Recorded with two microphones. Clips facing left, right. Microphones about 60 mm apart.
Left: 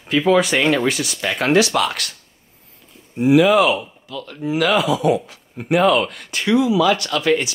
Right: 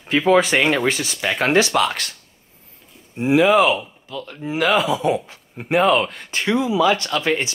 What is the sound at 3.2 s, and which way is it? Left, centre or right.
Speech, right.